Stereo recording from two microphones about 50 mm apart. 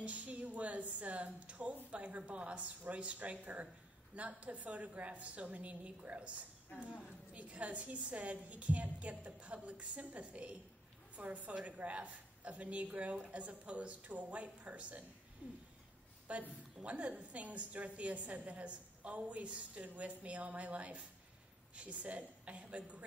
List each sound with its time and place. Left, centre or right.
0.0 s a woman's voice: right
16.3 s a woman's voice: right